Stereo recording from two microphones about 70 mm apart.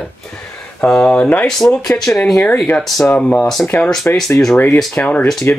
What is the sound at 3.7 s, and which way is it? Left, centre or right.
Speech, left.